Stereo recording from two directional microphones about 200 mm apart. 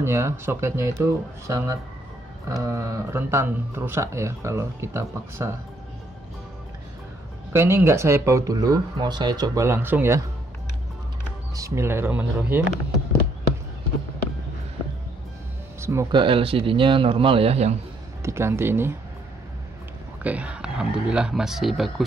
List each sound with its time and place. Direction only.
0.0 s speech: 15° right (ahead or behind)
7.5 s speech: 10° right (ahead or behind)
11.5 s speech: 15° right (ahead or behind)
15.8 s a man's voice: 15° right (ahead or behind); by 17.7 s 30° right (ahead or behind)
18.2 s speech: 15° right (ahead or behind)
20.2 s speech: 5° right (ahead or behind)